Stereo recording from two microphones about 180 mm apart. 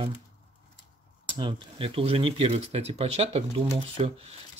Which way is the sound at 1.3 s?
25° right (ahead or behind).